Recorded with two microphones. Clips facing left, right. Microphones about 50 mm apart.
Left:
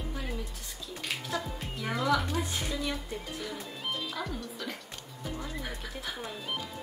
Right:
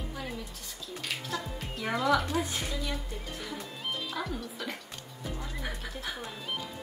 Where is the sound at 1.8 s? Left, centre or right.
Centre.